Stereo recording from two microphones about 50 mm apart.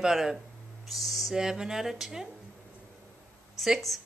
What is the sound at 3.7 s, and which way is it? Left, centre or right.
Speech, centre.